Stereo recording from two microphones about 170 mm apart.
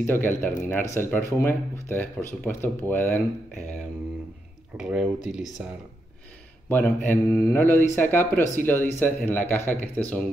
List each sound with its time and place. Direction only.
0.0 s speech: 10° left (ahead or behind)
4.7 s speech: 5° right (ahead or behind)
6.7 s speech: 10° left (ahead or behind)
7.2 s speech: 20° left (ahead or behind)